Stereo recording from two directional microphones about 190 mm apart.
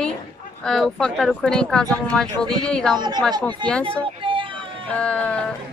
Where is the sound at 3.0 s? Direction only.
20° right (ahead or behind).